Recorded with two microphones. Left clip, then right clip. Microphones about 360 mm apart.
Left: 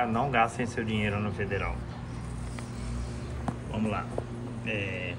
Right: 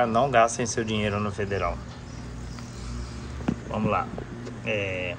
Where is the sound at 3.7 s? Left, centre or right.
Centre.